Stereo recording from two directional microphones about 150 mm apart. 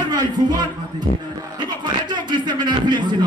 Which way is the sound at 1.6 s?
30° right (ahead or behind).